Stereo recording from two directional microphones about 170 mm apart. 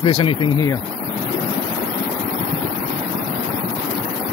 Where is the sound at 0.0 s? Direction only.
30° left (ahead or behind).